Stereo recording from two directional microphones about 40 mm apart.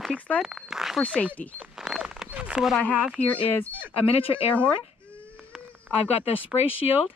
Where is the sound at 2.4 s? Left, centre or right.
Right.